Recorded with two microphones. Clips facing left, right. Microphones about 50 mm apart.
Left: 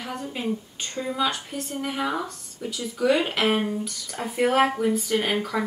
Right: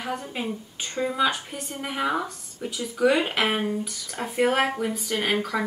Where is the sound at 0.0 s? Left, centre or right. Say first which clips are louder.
Even; centre.